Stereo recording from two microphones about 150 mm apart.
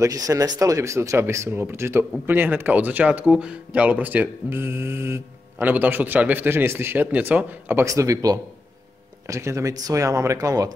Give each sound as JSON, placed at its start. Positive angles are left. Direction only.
{"t": 0.0, "sound": "speech", "side_deg": -25}